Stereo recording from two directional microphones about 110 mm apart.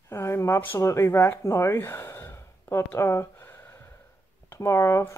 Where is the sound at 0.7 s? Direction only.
25° left (ahead or behind).